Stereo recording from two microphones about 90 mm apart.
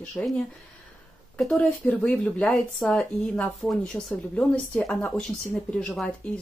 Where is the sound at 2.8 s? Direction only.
5° left (ahead or behind).